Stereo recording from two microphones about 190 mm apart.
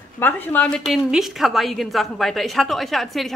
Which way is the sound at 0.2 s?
10° left (ahead or behind).